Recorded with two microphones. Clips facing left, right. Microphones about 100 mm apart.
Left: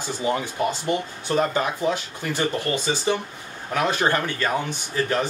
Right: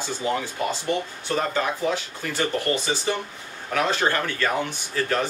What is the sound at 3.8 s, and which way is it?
Speech, 15° left (ahead or behind).